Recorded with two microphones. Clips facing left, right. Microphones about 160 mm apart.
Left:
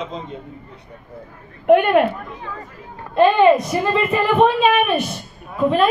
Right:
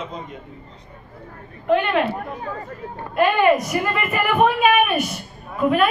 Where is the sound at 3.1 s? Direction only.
25° left (ahead or behind).